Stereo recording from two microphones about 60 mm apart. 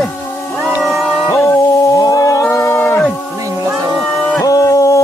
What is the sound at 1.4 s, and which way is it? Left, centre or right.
Music, left.